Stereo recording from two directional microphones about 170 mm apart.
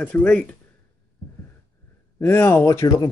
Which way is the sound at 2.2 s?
15° left (ahead or behind).